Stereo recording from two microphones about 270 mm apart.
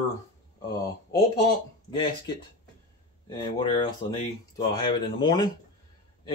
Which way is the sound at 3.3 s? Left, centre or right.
Centre.